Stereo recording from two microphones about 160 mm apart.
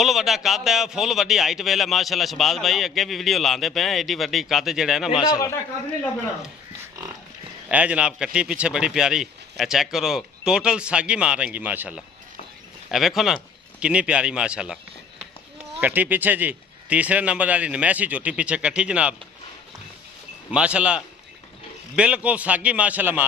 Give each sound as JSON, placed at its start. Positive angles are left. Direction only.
{"t": 0.0, "sound": "a man's voice", "side_deg": 0}
{"t": 5.3, "sound": "a man's voice", "side_deg": 20}
{"t": 7.7, "sound": "a man's voice", "side_deg": -10}
{"t": 15.8, "sound": "a man's voice", "side_deg": -10}
{"t": 20.5, "sound": "a man's voice", "side_deg": -5}